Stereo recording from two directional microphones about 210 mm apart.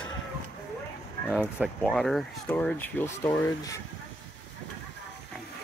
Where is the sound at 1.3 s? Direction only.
5° right (ahead or behind); by 3.8 s 15° left (ahead or behind).